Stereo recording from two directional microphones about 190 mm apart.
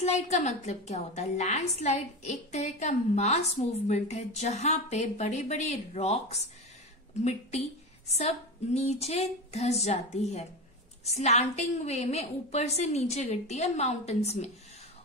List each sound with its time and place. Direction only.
0.0 s a woman's voice: 35° left (ahead or behind)
8.1 s a woman's voice: 35° left (ahead or behind)